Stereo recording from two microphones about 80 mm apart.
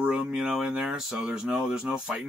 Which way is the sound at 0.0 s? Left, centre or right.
Centre.